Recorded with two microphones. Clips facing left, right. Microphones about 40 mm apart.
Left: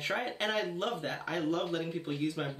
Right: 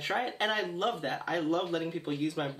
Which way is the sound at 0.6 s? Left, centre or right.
Right.